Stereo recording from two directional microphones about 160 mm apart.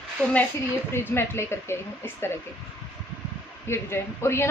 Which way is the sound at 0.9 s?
15° left (ahead or behind).